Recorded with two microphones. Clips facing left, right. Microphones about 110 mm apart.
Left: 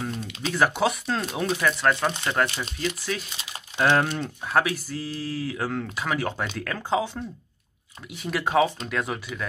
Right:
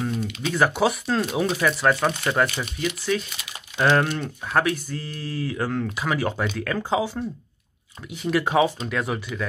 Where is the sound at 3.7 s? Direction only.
Centre (ahead or behind).